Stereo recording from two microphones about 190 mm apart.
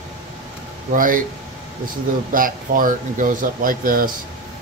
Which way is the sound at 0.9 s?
45° right (ahead or behind).